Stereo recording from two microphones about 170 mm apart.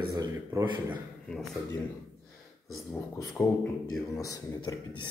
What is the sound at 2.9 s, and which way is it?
Speech, 20° left (ahead or behind).